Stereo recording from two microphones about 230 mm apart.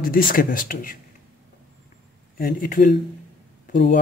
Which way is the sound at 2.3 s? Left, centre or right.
Left.